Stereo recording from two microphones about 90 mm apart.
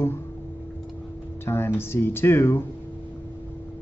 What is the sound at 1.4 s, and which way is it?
Speech, 25° left (ahead or behind).